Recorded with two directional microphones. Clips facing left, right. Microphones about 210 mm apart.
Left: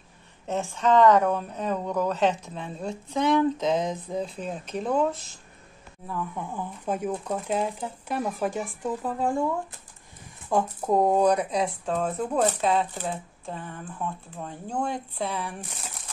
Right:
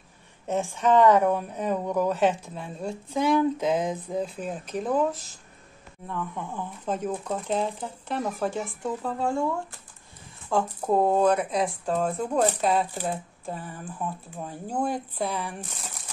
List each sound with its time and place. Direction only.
0.5 s speech: 15° right (ahead or behind); by 9.4 s 15° left (ahead or behind)
10.5 s speech: 15° left (ahead or behind)
11.3 s speech: 5° right (ahead or behind)